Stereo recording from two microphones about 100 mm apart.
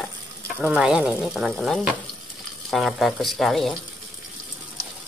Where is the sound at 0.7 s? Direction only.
10° right (ahead or behind).